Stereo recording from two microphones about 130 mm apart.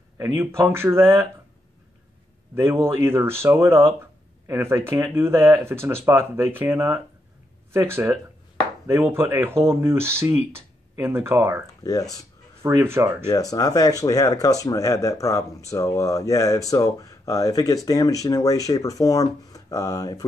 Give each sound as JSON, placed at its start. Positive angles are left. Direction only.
{"t": 0.2, "sound": "speech", "side_deg": -20}
{"t": 2.5, "sound": "speech", "side_deg": -20}
{"t": 11.8, "sound": "speech", "side_deg": 25}
{"t": 12.6, "sound": "speech", "side_deg": -20}
{"t": 13.3, "sound": "speech", "side_deg": 25}